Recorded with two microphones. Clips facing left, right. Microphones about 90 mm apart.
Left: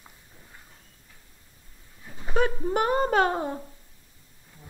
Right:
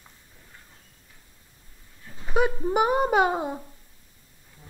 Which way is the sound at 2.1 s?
10° left (ahead or behind).